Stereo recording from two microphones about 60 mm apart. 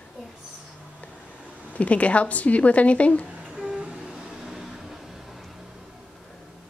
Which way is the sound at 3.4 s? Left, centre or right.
Centre.